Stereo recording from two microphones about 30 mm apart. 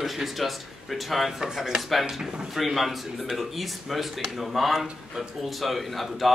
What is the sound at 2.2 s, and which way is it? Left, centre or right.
Speech, right.